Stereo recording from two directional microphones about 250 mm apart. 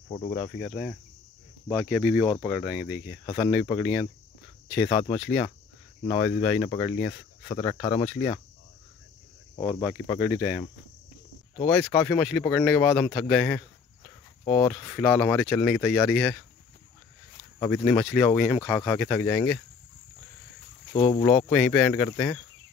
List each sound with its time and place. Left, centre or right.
0.1 s speech: left
0.4 s speech: centre
2.2 s speech: centre
5.2 s speech: centre
9.6 s speech: centre
11.5 s speech: centre
14.4 s speech: left
15.0 s speech: centre
17.6 s speech: centre
20.9 s speech: left